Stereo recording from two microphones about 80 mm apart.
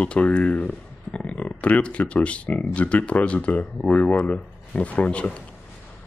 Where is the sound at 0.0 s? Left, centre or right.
Centre.